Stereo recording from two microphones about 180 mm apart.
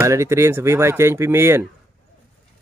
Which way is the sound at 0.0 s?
15° right (ahead or behind).